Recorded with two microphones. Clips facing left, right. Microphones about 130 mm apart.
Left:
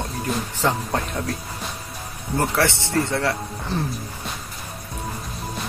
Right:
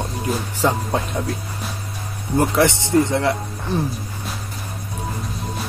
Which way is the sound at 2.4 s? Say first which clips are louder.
Right 4 dB; 15° right (ahead or behind).